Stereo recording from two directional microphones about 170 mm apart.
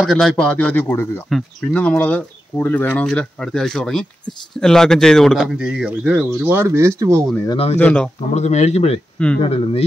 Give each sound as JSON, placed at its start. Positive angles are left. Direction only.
{"t": 0.0, "sound": "speech", "side_deg": 0}
{"t": 7.4, "sound": "speech", "side_deg": 35}
{"t": 7.8, "sound": "speech", "side_deg": 5}
{"t": 8.3, "sound": "speech", "side_deg": 40}